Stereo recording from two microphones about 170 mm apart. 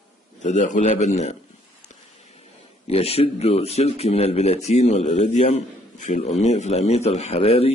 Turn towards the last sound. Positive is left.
turn(degrees=35)  # may be behind; listen again after turning